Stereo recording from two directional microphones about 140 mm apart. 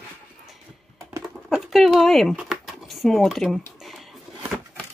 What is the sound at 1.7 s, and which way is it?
Speech, centre (ahead or behind).